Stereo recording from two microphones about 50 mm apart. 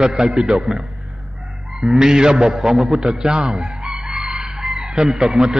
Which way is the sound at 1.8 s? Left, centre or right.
Centre.